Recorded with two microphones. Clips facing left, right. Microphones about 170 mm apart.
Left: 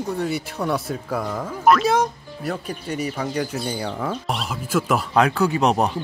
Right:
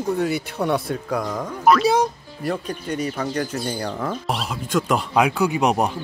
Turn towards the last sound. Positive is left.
turn(degrees=-10)  # may be behind; listen again after turning